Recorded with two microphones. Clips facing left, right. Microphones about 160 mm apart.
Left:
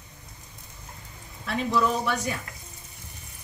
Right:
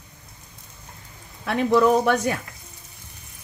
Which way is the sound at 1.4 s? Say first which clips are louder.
Right 7 dB; 65° right (ahead or behind).